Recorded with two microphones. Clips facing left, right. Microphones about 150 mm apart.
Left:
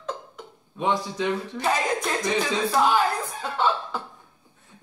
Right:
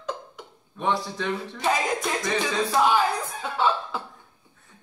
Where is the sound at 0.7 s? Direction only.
15° left (ahead or behind).